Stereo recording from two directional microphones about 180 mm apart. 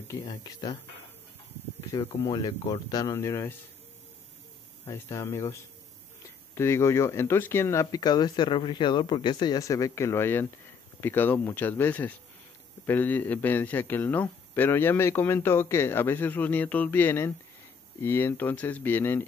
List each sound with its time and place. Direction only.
0.1 s speech: 20° left (ahead or behind)
1.9 s speech: 20° left (ahead or behind)
4.8 s a man's voice: 15° left (ahead or behind)